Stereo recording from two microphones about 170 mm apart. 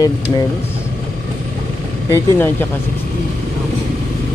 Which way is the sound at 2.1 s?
10° left (ahead or behind).